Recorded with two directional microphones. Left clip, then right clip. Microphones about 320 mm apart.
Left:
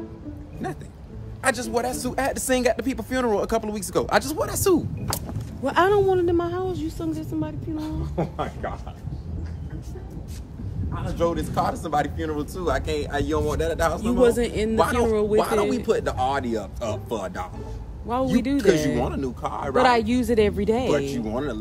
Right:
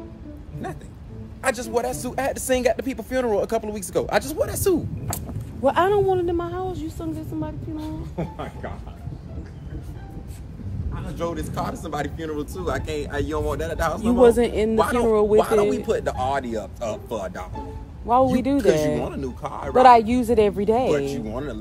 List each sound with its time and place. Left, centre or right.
1.4 s speech: centre
7.7 s speech: centre
11.1 s speech: centre
14.2 s a man's voice: centre
15.3 s speech: centre
18.1 s a man's voice: centre
18.9 s speech: centre
19.8 s speech: centre
20.9 s speech: centre